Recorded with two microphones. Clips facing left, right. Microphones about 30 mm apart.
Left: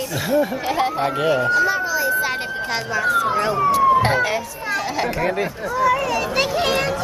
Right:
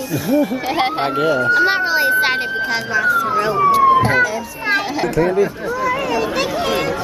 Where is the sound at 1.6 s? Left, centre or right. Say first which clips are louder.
Right 4 dB; right.